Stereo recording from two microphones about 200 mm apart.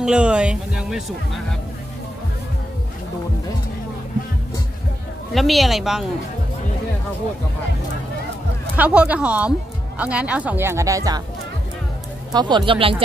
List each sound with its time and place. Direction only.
0.0 s speech: 5° right (ahead or behind)
5.3 s speech: centre (ahead or behind)
8.7 s speech: 5° right (ahead or behind)
12.3 s speech: 20° right (ahead or behind)